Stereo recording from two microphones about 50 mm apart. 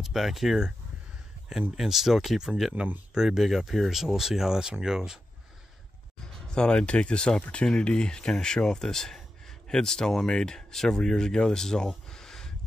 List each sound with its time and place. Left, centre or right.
0.0 s speech: centre
1.8 s speech: centre
6.5 s speech: centre
12.1 s a sound: centre